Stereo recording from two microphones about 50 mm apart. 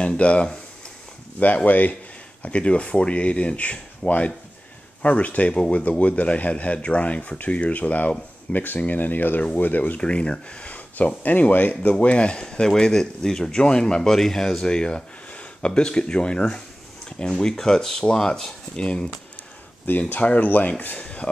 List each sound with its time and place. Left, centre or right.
0.0 s speech: left
9.9 s speech: left
11.9 s speech: left
19.9 s speech: left
20.8 s a sound: left